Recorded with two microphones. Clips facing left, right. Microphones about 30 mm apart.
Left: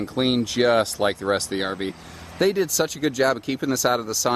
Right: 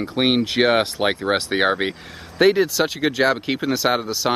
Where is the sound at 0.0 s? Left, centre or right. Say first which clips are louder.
Right 3 dB; right.